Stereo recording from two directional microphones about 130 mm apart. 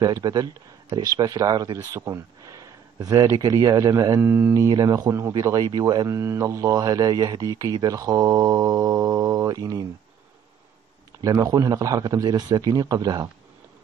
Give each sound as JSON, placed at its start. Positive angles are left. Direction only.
{"t": 0.0, "sound": "speech", "side_deg": -30}
{"t": 4.6, "sound": "speech", "side_deg": -25}
{"t": 6.0, "sound": "speech", "side_deg": -20}
{"t": 11.1, "sound": "speech", "side_deg": -25}